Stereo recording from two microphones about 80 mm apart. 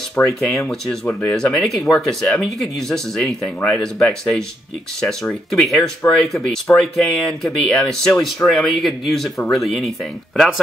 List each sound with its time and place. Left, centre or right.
0.2 s speech: centre
0.5 s speech: centre
6.0 s speech: left
6.8 s speech: centre